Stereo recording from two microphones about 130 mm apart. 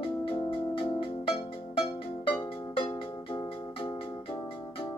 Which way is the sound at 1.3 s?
45° left (ahead or behind).